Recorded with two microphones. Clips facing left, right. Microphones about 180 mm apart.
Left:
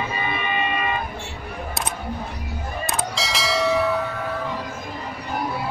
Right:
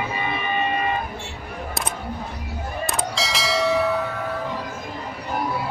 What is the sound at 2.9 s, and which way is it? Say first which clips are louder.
Bell: even; centre (ahead or behind).